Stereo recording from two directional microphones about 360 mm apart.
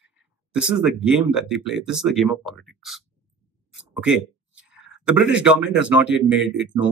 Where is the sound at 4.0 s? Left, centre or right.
Centre.